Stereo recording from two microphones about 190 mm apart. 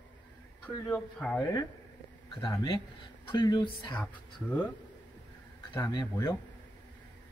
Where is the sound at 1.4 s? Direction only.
20° left (ahead or behind).